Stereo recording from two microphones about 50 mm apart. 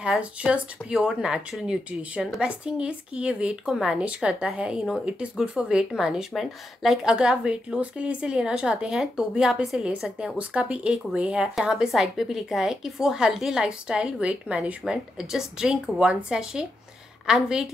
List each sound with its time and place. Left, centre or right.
0.0 s a woman's voice: centre
6.3 s a woman's voice: centre
14.2 s speech: right
15.1 s a woman's voice: centre